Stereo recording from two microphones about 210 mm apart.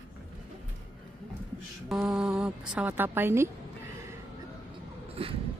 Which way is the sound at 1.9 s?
Centre (ahead or behind).